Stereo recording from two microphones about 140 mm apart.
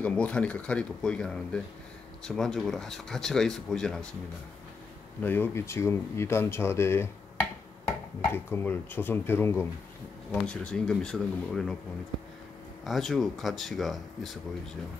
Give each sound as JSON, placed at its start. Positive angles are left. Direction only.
{"t": 0.0, "sound": "speech", "side_deg": 10}
{"t": 5.2, "sound": "speech", "side_deg": 15}
{"t": 10.4, "sound": "speech", "side_deg": 5}
{"t": 12.8, "sound": "speech", "side_deg": 0}